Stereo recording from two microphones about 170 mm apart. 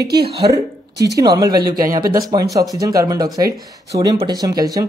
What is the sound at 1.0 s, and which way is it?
Speech, 20° right (ahead or behind).